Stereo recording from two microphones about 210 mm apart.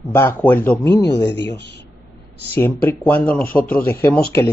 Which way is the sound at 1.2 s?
55° left (ahead or behind).